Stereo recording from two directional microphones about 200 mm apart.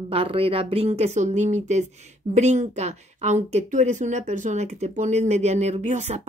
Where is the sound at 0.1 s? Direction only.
30° right (ahead or behind).